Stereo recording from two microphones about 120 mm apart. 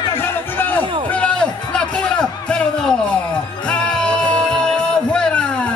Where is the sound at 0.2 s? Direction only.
15° left (ahead or behind).